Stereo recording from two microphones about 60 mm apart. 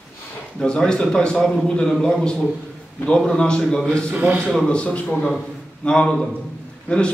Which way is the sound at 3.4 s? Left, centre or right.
Centre.